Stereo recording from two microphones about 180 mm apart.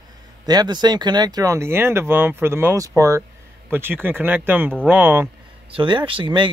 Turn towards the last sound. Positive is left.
turn(degrees=-25)  # may be behind; listen again after turning